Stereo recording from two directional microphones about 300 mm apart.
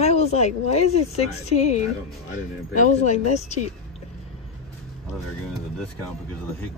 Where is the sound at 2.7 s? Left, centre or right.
Left.